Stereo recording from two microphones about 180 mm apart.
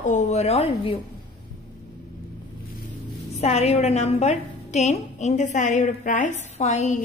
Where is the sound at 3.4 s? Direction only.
35° left (ahead or behind).